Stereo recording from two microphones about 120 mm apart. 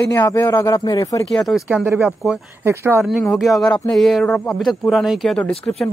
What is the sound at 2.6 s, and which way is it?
Speech, 20° right (ahead or behind).